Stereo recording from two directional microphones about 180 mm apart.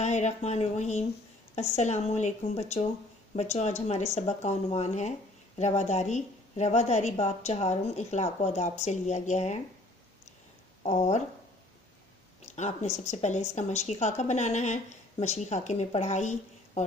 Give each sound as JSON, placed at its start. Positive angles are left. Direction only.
{"t": 0.0, "sound": "speech", "side_deg": 40}
{"t": 10.8, "sound": "speech", "side_deg": 40}
{"t": 12.5, "sound": "speech", "side_deg": 40}